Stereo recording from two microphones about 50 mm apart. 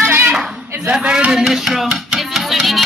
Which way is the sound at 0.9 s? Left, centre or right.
Centre.